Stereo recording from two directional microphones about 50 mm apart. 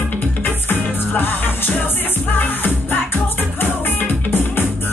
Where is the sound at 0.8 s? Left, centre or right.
Left.